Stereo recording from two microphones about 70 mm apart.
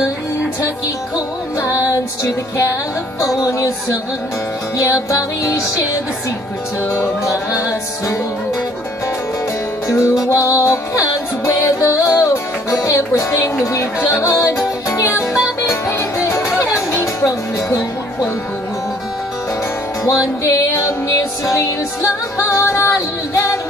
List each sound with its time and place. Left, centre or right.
1.1 s music: left
9.9 s music: left
13.1 s music: left
20.4 s music: left